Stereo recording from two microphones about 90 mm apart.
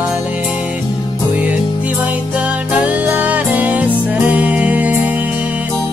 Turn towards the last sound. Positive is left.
turn(degrees=-15)  # may be behind; listen again after turning